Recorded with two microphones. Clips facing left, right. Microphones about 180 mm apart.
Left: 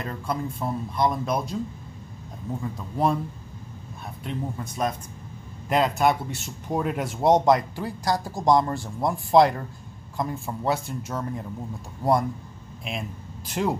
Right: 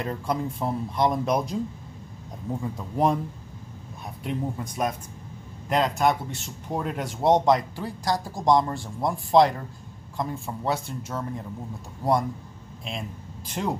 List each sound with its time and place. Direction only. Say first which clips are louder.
0.0 s speech: right 2 dB; 15° right (ahead or behind)
2.6 s speech: right 1 dB; 15° right (ahead or behind)
4.2 s speech: right 2 dB; 15° right (ahead or behind)
5.7 s a man's voice: left 1 dB; 5° left (ahead or behind)
13.5 s a man's voice: left 3 dB; 5° left (ahead or behind)